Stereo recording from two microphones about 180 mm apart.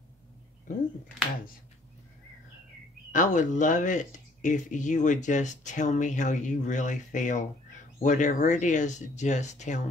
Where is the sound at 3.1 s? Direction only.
45° left (ahead or behind).